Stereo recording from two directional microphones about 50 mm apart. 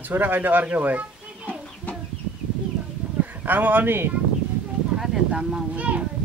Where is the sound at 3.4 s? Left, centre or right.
Right.